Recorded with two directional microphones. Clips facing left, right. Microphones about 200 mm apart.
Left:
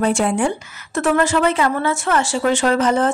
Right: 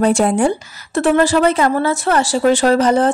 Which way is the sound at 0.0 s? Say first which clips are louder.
Right 4 dB; 40° right (ahead or behind).